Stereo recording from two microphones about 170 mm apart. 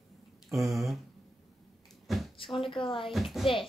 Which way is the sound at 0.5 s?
Centre (ahead or behind).